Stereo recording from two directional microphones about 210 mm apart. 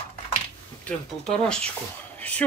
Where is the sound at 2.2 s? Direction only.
5° left (ahead or behind).